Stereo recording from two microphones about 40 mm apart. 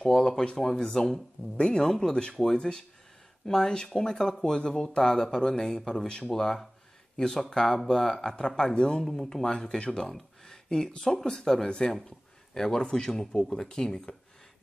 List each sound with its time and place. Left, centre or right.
0.0 s speech: centre
9.0 s speech: centre
10.0 s a sound: centre
10.9 s speech: centre